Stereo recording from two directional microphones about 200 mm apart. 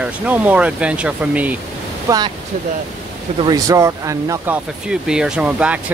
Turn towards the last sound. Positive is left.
turn(degrees=-5)  # may be behind; listen again after turning